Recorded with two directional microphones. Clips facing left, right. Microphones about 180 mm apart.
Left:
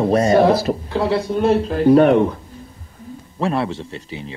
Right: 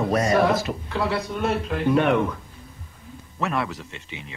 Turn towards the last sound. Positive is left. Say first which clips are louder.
# left 8 dB
turn(degrees=35)  # may be behind; listen again after turning